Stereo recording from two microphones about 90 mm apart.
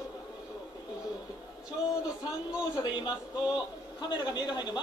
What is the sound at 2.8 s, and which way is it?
A man's voice, 55° left (ahead or behind).